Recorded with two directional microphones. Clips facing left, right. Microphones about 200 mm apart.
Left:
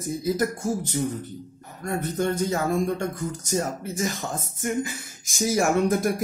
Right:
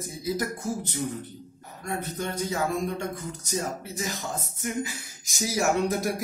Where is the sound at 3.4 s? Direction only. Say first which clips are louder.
Left 3 dB; 50° left (ahead or behind).